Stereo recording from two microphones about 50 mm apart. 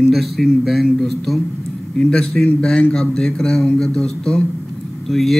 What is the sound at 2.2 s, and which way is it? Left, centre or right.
Speech, centre.